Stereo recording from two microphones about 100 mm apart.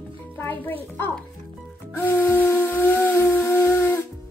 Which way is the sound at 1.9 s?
20° left (ahead or behind).